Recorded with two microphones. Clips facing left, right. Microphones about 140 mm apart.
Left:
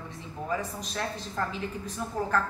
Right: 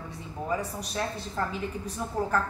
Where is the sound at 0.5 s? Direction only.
10° right (ahead or behind).